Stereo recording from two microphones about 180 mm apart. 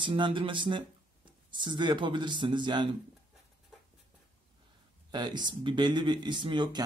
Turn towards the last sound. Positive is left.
turn(degrees=-25)  # may be behind; listen again after turning